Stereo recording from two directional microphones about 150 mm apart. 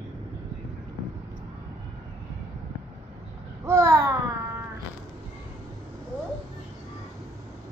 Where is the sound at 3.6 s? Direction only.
20° right (ahead or behind).